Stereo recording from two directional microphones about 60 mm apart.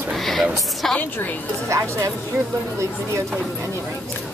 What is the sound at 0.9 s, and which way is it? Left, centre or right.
Speech, left.